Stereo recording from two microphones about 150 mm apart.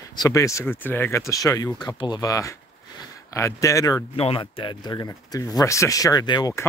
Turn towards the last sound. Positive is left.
turn(degrees=25)  # may be behind; listen again after turning